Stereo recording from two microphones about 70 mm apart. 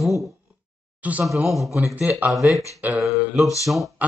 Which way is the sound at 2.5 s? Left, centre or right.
Left.